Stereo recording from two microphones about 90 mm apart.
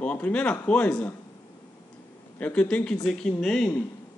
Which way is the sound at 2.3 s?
15° left (ahead or behind).